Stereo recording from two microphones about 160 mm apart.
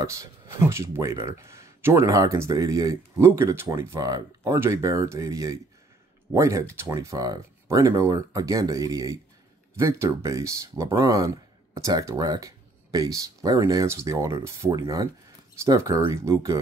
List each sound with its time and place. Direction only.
0.0 s speech: 20° right (ahead or behind)